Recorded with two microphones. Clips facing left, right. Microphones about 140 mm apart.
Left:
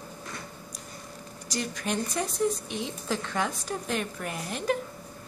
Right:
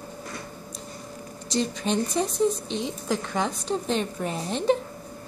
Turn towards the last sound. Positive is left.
turn(degrees=-30)  # may be behind; listen again after turning